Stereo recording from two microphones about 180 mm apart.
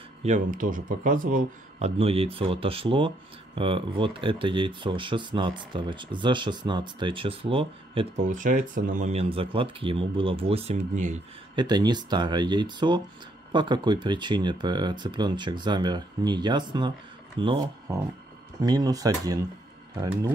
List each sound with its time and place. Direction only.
0.2 s speech: 45° right (ahead or behind)
1.8 s speech: 30° right (ahead or behind)
8.2 s speech: 45° right (ahead or behind)
11.5 s speech: 25° right (ahead or behind)